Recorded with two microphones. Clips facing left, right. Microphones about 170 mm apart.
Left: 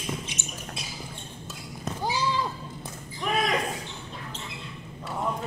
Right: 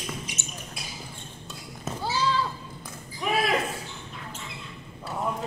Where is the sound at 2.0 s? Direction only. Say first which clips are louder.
Right 1 dB; 15° left (ahead or behind).